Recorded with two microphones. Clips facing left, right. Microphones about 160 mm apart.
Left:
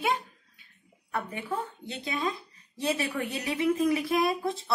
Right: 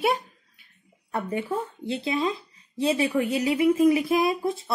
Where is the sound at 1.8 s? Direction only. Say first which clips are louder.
Right 7 dB; 30° right (ahead or behind).